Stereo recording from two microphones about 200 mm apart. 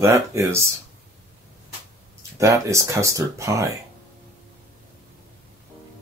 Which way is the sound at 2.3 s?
15° right (ahead or behind).